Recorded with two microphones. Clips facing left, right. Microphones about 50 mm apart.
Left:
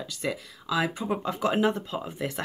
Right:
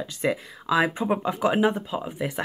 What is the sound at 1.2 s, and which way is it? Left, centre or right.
Speech, centre.